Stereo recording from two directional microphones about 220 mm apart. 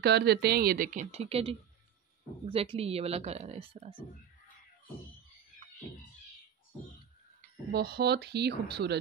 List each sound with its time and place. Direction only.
0.0 s speech: 50° right (ahead or behind); by 4.0 s 25° right (ahead or behind)
7.7 s speech: 45° right (ahead or behind)